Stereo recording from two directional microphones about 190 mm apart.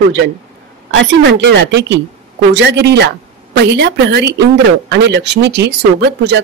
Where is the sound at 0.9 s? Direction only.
70° right (ahead or behind).